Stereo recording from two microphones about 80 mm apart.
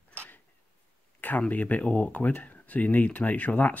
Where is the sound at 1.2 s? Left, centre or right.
Left.